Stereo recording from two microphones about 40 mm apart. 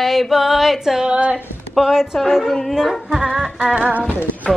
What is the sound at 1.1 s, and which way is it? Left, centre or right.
Speech, right.